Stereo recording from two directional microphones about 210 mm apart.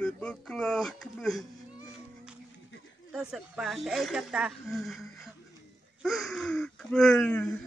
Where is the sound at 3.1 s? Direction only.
Centre (ahead or behind).